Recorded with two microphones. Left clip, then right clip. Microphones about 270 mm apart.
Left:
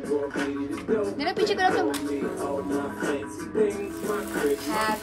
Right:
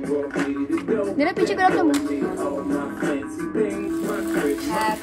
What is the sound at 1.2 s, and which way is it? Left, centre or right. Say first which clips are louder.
Speech: right 6 dB; right.